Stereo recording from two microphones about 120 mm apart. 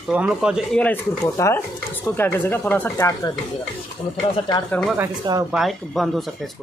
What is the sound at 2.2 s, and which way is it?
Speech, 20° left (ahead or behind).